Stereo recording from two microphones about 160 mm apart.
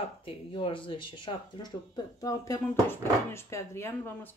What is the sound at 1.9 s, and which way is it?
Speech, 20° left (ahead or behind).